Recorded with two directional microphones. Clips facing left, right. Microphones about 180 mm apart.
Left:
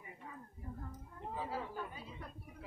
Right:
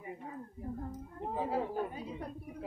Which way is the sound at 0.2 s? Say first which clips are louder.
Right 8 dB; 40° right (ahead or behind).